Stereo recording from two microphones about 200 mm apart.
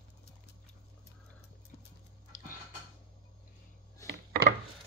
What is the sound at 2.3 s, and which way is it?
Tick-tock, 40° left (ahead or behind).